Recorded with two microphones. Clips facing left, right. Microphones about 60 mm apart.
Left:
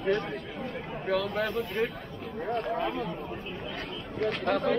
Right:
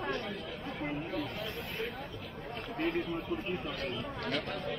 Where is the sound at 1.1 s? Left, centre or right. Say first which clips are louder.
Left 9 dB; left.